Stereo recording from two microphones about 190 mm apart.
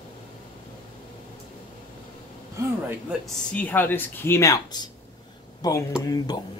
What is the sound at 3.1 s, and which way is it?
Speech, 5° left (ahead or behind).